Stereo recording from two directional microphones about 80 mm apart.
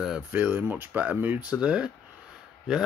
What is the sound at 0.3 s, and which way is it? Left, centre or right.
Speech, right.